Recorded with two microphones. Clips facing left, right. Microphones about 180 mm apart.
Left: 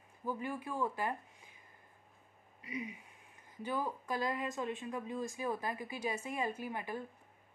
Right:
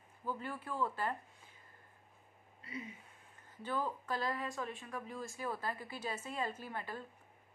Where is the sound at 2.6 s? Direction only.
15° left (ahead or behind).